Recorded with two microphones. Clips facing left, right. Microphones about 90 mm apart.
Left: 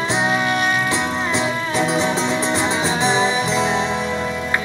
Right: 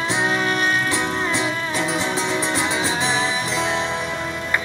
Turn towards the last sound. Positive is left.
turn(degrees=0)  # may be behind; listen again after turning